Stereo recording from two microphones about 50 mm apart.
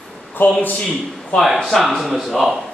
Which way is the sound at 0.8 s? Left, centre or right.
Centre.